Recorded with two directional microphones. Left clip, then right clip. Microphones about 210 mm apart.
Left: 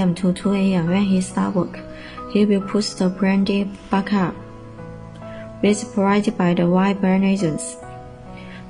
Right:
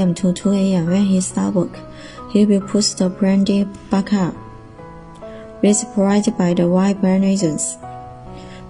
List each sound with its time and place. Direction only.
0.0 s speech: 20° right (ahead or behind)
5.6 s speech: 25° right (ahead or behind)